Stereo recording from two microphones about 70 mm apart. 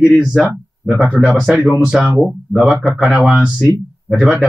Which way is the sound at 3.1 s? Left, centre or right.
Right.